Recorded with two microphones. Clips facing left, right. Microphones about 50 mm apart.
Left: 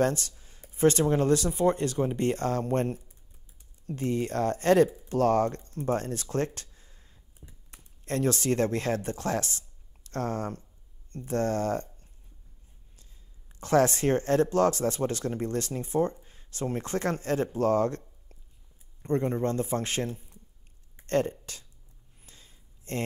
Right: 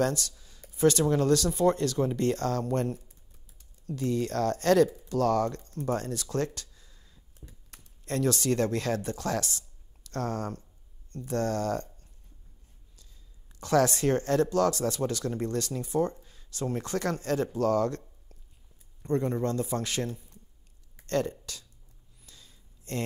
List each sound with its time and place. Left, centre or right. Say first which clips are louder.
0.0 s speech: left 2 dB; left
7.2 s computer keyboard: right 4 dB; centre
8.0 s speech: even; left
19.0 s a man's voice: left 1 dB; left
20.9 s a sound: left 2 dB; left